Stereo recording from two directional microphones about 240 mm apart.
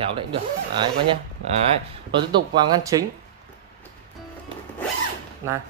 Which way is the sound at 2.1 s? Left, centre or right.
Centre.